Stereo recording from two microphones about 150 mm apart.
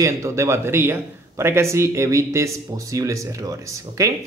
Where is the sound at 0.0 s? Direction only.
20° right (ahead or behind).